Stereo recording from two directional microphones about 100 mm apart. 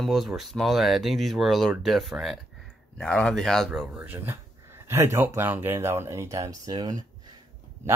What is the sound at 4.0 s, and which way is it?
Speech, 20° right (ahead or behind).